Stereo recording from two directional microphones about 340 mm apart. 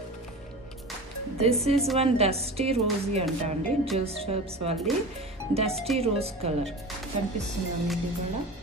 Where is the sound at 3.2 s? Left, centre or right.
Centre.